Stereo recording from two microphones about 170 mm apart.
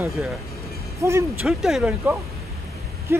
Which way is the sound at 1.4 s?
Centre (ahead or behind).